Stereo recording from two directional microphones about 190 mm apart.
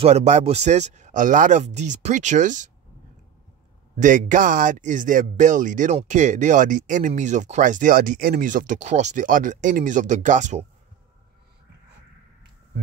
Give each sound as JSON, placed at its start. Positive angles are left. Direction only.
{"t": 0.0, "sound": "speech", "side_deg": -35}
{"t": 3.9, "sound": "speech", "side_deg": -40}